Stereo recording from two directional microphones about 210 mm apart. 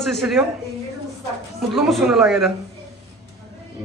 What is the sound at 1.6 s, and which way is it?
Speech, centre (ahead or behind).